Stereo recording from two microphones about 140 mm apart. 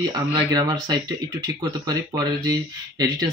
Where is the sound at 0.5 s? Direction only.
30° right (ahead or behind).